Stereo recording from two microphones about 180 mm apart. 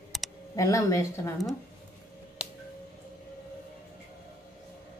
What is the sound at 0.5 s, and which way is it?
Speech, 15° left (ahead or behind).